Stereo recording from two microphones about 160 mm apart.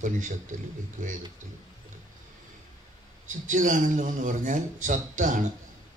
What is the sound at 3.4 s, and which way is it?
Speech, 55° right (ahead or behind).